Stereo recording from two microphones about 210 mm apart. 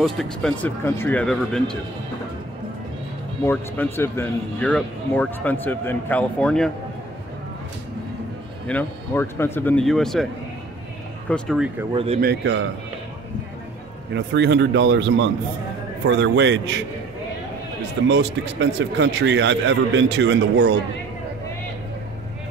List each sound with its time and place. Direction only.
0.0 s speech: centre (ahead or behind)
3.4 s speech: 10° left (ahead or behind)
8.6 s speech: 10° left (ahead or behind)
11.2 s speech: 5° left (ahead or behind)
11.9 s speech: 25° right (ahead or behind)
12.2 s a man's voice: 55° right (ahead or behind)
14.1 s speech: 55° right (ahead or behind)
18.0 s speech: 55° right (ahead or behind)